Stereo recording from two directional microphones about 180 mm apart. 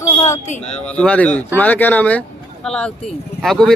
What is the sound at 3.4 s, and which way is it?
Speech, centre (ahead or behind).